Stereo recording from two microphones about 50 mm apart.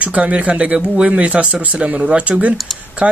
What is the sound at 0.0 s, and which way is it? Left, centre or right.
Speech, right.